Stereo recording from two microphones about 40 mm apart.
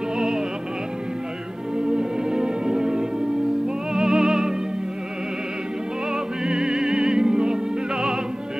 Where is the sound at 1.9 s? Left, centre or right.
Centre.